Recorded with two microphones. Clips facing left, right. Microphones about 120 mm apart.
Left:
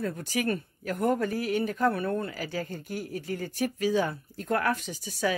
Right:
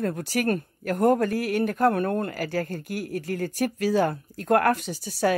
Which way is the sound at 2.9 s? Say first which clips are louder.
Right 4 dB; 70° right (ahead or behind).